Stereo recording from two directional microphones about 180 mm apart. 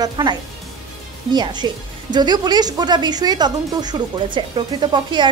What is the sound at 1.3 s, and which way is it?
Speech, 25° right (ahead or behind).